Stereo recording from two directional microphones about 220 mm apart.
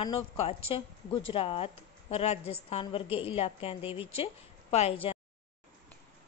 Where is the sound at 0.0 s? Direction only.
25° left (ahead or behind).